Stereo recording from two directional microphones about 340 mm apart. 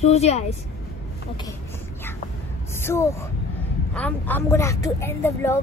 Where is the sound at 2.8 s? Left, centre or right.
Centre.